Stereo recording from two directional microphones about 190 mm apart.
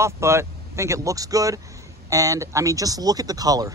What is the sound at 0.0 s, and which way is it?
Speech, 15° right (ahead or behind).